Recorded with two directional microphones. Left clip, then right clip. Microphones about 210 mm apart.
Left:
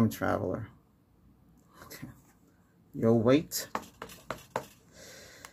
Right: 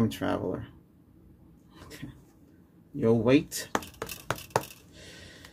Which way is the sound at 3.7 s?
40° right (ahead or behind).